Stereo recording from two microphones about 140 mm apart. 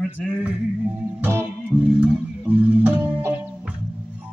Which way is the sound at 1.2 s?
15° right (ahead or behind).